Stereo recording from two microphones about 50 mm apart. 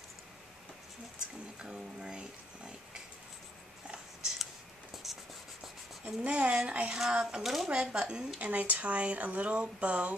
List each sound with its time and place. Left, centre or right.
1.6 s speech: centre
3.8 s a sound: centre
5.0 s writing: centre
6.2 s speech: right
7.0 s speech: centre
7.7 s speech: centre
8.4 s speech: right